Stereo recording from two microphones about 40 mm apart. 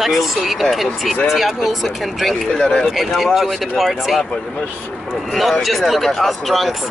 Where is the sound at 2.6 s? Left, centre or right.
Left.